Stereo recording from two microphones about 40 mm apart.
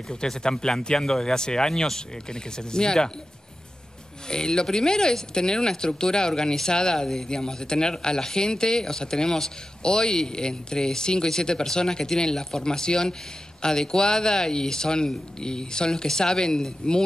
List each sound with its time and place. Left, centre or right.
0.1 s speech: centre
4.3 s speech: centre